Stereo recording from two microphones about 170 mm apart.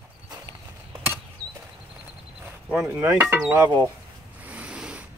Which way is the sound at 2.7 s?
5° right (ahead or behind).